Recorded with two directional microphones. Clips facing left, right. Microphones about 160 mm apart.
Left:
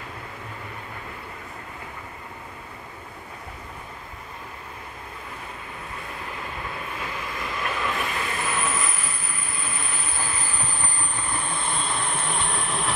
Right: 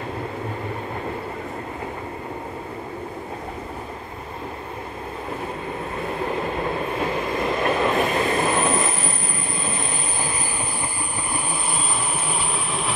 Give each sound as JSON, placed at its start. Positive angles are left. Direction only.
{"t": 6.4, "sound": "train", "side_deg": -40}
{"t": 11.3, "sound": "train", "side_deg": -10}